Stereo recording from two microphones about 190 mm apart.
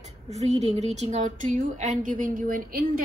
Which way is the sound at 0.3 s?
35° right (ahead or behind).